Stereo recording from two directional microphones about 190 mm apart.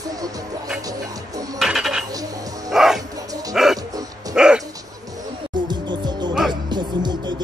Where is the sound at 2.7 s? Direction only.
Centre (ahead or behind).